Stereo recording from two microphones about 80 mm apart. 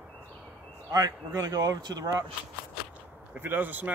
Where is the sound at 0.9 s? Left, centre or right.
Right.